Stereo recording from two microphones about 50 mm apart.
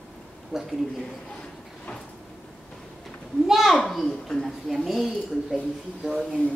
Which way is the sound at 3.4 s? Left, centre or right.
Centre.